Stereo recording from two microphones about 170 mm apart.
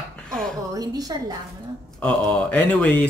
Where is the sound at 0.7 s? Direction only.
20° right (ahead or behind).